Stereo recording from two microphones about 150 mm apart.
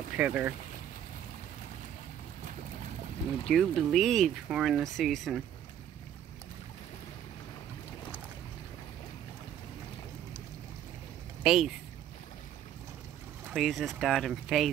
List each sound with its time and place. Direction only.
0.2 s speech: 10° right (ahead or behind)
3.4 s speech: centre (ahead or behind)
11.4 s speech: 5° right (ahead or behind)
13.5 s speech: centre (ahead or behind)